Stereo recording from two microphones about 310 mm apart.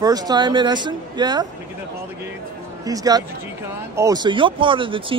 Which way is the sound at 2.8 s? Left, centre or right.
Centre.